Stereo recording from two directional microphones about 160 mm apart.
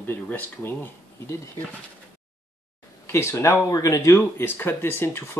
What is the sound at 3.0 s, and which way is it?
Speech, 15° left (ahead or behind).